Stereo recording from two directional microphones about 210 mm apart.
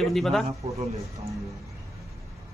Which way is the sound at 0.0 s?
Centre (ahead or behind).